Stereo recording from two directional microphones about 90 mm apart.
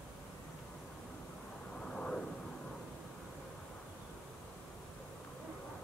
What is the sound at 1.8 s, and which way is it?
Vehicle, 10° left (ahead or behind).